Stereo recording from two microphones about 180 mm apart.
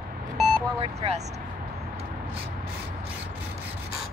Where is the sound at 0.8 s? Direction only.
35° right (ahead or behind).